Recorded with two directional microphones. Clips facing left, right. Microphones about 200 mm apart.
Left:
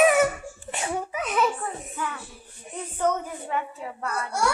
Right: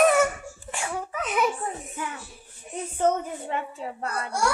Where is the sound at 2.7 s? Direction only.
25° right (ahead or behind).